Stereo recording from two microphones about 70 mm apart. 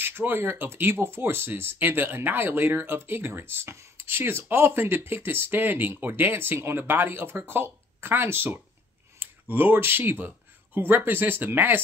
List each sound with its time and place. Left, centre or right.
0.0 s speech: right